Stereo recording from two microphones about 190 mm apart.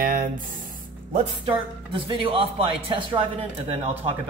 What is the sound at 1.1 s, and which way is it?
Speech, 30° right (ahead or behind).